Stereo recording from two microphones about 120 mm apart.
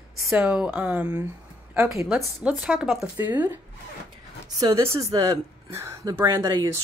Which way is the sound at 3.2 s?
15° right (ahead or behind).